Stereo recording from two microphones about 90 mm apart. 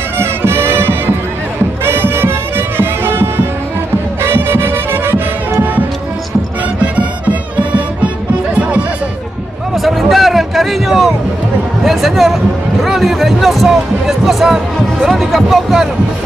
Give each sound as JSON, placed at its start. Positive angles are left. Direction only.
{"t": 0.2, "sound": "music", "side_deg": -25}
{"t": 9.8, "sound": "a sound", "side_deg": 0}
{"t": 12.8, "sound": "speech", "side_deg": 0}